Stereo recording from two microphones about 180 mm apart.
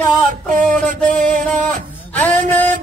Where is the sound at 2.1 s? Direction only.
10° left (ahead or behind).